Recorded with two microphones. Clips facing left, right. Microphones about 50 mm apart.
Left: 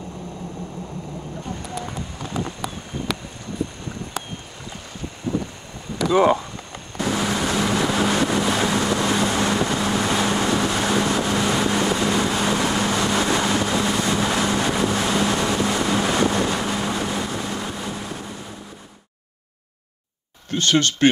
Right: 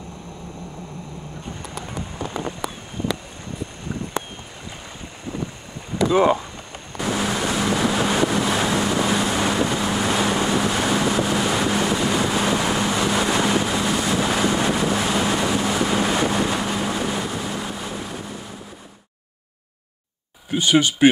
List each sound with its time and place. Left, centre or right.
2.1 s run: right
3.6 s a sound: centre
5.3 s boat: centre
7.0 s vehicle: centre
20.4 s speech: centre